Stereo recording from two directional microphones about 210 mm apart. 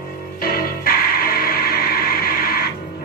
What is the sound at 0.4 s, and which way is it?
Music, 45° left (ahead or behind).